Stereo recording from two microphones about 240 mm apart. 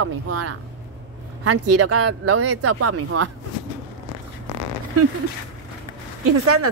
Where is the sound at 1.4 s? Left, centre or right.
Right.